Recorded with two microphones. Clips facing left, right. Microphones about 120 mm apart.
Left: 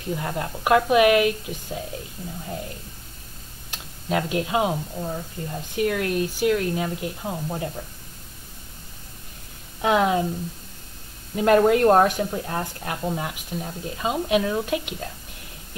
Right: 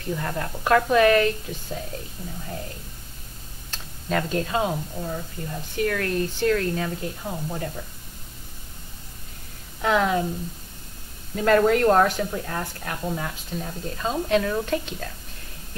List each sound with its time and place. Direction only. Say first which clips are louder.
0.1 s speech: left 1 dB; 20° left (ahead or behind)
3.7 s speech: left 1 dB; 10° left (ahead or behind)
9.8 s a woman's voice: left 2 dB; 20° left (ahead or behind)
11.3 s a woman's voice: left 2 dB; 20° left (ahead or behind)